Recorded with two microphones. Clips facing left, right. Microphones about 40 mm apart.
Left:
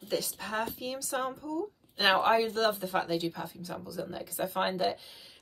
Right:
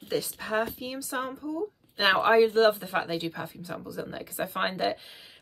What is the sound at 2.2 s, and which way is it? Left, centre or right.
Speech, right.